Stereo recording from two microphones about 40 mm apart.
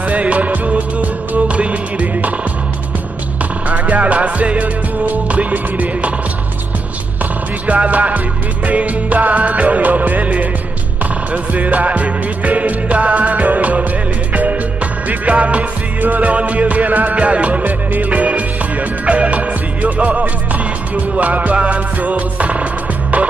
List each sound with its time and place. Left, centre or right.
0.0 s music: right
3.6 s music: right
7.6 s music: right
15.0 s music: right